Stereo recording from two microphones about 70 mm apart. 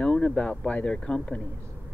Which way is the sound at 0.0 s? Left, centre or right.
Centre.